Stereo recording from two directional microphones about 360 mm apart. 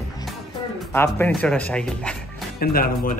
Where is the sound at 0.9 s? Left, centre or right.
Centre.